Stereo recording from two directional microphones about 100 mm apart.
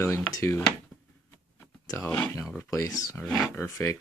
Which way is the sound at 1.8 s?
30° left (ahead or behind).